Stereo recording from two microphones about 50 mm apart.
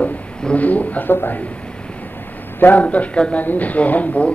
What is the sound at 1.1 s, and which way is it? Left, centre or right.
Speech, left.